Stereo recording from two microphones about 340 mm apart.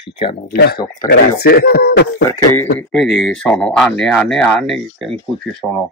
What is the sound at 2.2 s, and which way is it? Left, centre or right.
Speech, centre.